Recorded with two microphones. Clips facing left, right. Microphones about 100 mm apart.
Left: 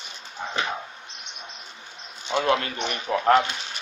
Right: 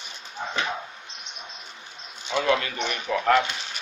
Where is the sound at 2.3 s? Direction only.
40° left (ahead or behind).